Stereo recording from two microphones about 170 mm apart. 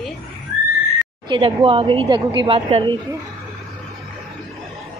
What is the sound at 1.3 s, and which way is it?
A woman's voice, 30° right (ahead or behind).